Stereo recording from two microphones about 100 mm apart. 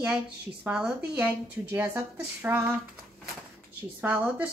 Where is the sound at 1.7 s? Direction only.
25° right (ahead or behind).